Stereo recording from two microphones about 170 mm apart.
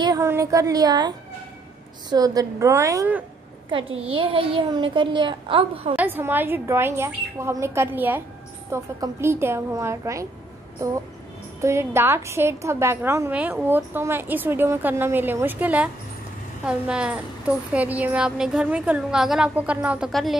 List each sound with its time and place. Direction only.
0.0 s a woman's voice: 20° right (ahead or behind)
3.7 s a child's voice: 30° right (ahead or behind)
5.9 s a woman's voice: 10° right (ahead or behind)
11.6 s a woman's voice: 15° right (ahead or behind); by 20.3 s centre (ahead or behind)